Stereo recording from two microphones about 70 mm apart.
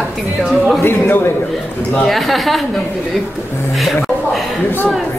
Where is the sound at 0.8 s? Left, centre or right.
Left.